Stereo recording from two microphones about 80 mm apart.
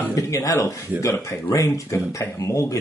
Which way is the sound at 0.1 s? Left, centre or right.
Left.